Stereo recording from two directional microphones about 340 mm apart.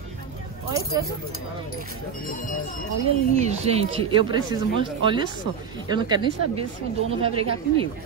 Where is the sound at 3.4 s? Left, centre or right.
Centre.